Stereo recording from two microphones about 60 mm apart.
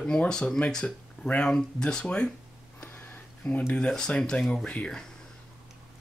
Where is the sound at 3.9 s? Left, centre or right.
Centre.